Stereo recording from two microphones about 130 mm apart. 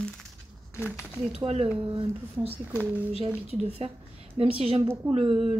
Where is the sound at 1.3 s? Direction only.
50° right (ahead or behind).